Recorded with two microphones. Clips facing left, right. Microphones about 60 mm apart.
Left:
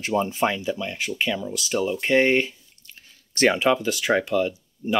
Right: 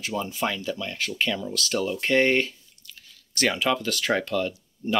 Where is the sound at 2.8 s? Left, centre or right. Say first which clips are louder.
Even; left; by 5.0 s centre.